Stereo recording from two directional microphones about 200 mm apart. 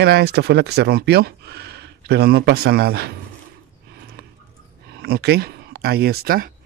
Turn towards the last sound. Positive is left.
turn(degrees=-45)  # may be behind; listen again after turning